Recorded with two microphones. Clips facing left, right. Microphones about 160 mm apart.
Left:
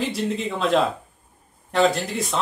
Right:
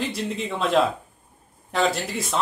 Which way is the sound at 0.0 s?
Centre (ahead or behind).